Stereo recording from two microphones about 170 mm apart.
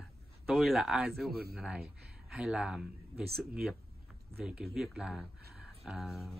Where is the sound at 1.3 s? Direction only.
65° right (ahead or behind).